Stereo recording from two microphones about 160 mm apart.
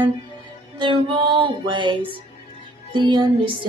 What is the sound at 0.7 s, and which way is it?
Music, 30° right (ahead or behind).